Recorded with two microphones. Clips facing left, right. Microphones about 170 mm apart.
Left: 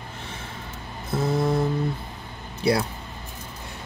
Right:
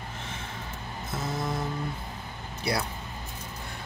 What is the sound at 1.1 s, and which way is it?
Music, 30° left (ahead or behind).